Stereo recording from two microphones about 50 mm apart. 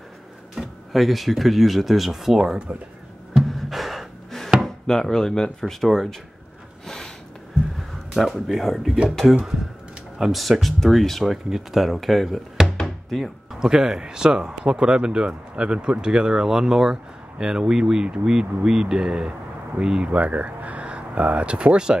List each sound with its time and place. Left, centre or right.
0.6 s drawer open or close: centre
0.9 s speech: centre
3.4 s gasp: centre
4.6 s speech: centre
8.1 s speech: centre
20.1 s speech: right